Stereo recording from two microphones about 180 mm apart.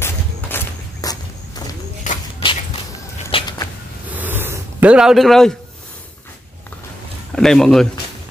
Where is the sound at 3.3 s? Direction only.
30° left (ahead or behind).